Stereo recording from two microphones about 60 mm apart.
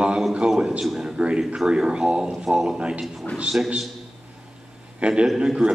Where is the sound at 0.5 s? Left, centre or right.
Centre.